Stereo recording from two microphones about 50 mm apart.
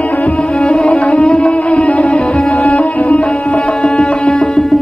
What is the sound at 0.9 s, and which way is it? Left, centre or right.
Music, left.